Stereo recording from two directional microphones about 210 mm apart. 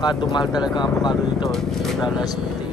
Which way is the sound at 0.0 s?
20° left (ahead or behind).